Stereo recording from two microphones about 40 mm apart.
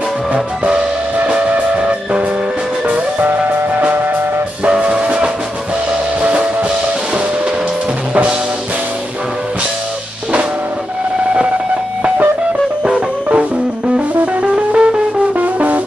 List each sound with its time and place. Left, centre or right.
0.3 s music: right
4.6 s music: right
12.8 s music: right